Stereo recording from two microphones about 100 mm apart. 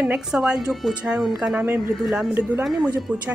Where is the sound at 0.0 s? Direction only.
10° right (ahead or behind).